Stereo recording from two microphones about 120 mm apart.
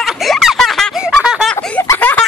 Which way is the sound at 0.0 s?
Centre (ahead or behind).